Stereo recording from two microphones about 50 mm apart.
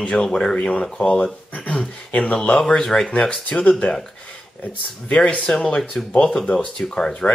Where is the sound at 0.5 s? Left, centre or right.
Left.